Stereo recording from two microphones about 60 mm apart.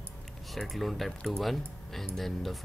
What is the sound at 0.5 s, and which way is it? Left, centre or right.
Speech, centre.